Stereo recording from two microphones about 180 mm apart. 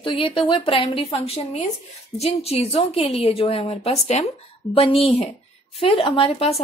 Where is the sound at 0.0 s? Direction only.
30° left (ahead or behind).